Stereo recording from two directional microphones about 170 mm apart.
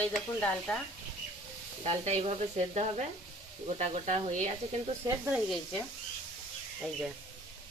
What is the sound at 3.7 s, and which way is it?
Sizzle, 40° right (ahead or behind).